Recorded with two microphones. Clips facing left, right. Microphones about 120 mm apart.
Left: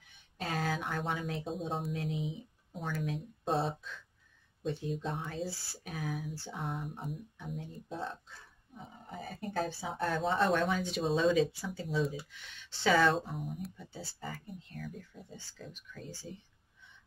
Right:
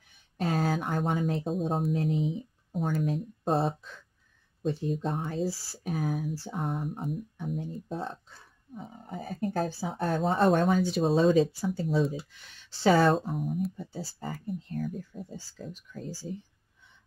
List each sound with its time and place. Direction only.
0.4 s a sound: 45° right (ahead or behind)
1.9 s speech: 40° right (ahead or behind)
2.3 s a sound: 45° right (ahead or behind)
3.0 s speech: 45° right (ahead or behind)
4.9 s speech: 45° right (ahead or behind)
13.4 s speech: centre (ahead or behind)
13.7 s speech: 40° right (ahead or behind)